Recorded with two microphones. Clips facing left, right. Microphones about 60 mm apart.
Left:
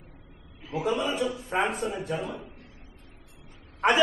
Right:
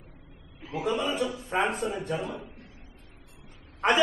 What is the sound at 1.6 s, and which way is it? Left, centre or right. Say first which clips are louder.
Speech: even; centre.